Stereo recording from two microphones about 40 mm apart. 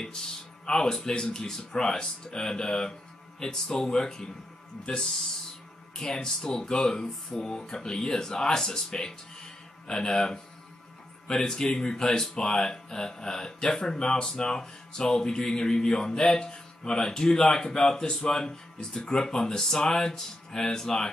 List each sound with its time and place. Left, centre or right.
0.7 s speech: centre
5.9 s speech: centre